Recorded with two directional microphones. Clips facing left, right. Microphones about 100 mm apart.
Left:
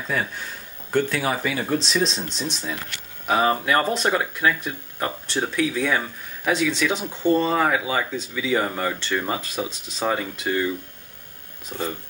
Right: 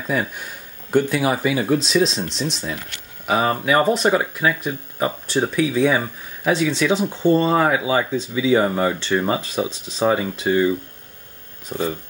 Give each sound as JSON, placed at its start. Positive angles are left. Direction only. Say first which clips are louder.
{"t": 0.9, "sound": "speech", "louder": "right 4 dB", "side_deg": -15}
{"t": 6.5, "sound": "speech", "louder": "right 4 dB", "side_deg": 0}
{"t": 11.7, "sound": "speech", "louder": "right 5 dB", "side_deg": -30}